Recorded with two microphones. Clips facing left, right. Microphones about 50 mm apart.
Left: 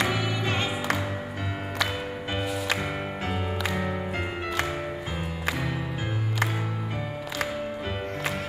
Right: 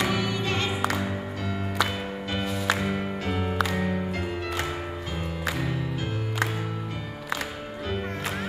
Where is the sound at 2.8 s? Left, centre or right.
Centre.